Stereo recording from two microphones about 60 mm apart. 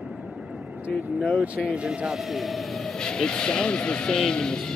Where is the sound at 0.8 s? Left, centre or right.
Right.